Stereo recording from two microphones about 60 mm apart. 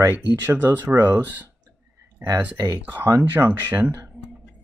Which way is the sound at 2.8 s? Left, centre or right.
Right.